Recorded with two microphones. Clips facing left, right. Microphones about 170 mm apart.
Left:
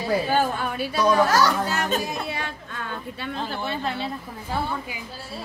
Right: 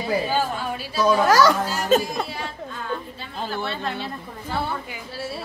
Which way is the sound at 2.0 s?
65° left (ahead or behind).